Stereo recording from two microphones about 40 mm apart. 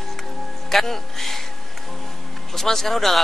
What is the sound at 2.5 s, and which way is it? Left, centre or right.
Speech, centre.